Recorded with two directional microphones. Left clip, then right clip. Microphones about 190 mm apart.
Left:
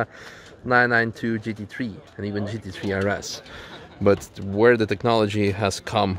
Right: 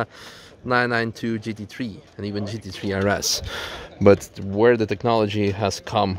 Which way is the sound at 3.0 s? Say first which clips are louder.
Right 8 dB; 45° right (ahead or behind).